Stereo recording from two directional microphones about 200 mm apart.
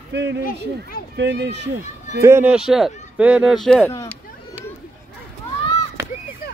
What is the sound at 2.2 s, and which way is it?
Speech, 10° right (ahead or behind).